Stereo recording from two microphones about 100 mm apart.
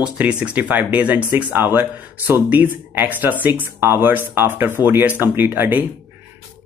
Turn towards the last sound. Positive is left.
turn(degrees=-20)  # may be behind; listen again after turning